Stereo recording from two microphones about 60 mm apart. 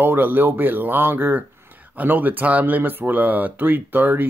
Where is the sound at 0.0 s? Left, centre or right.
Right.